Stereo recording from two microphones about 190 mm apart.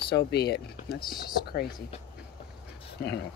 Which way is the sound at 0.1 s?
60° left (ahead or behind).